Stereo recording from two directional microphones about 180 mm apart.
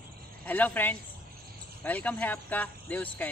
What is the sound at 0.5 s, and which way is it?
Speech, 10° left (ahead or behind).